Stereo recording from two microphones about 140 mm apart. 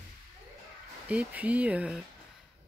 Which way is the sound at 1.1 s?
10° right (ahead or behind).